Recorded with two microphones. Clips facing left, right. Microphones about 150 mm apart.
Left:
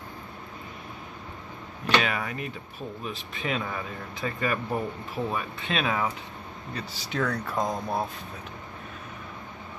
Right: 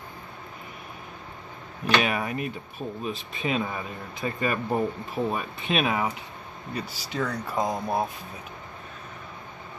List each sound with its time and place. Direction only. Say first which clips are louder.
2.0 s speech: right 1 dB; 20° right (ahead or behind)